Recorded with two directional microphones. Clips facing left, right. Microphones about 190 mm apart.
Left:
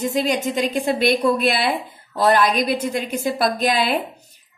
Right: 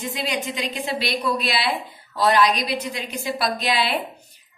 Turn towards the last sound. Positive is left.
turn(degrees=45)  # may be behind; listen again after turning